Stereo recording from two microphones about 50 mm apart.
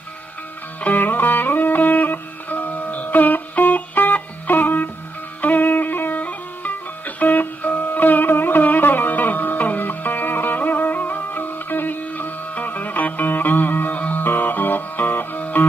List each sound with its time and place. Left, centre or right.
0.8 s music: left